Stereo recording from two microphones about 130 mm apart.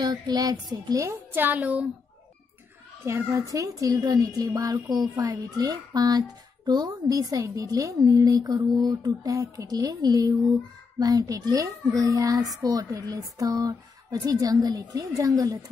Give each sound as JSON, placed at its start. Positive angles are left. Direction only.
{"t": 0.0, "sound": "speech", "side_deg": -30}
{"t": 3.1, "sound": "speech", "side_deg": -20}